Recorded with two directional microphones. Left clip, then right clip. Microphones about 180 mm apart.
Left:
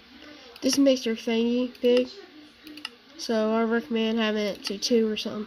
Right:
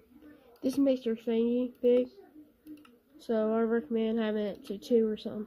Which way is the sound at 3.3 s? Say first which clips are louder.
Left 4 dB; centre (ahead or behind).